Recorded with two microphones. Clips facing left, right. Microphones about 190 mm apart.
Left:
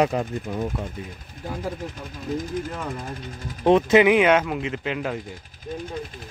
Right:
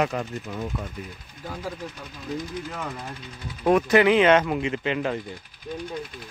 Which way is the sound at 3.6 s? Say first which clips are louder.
Left 3 dB; 25° left (ahead or behind).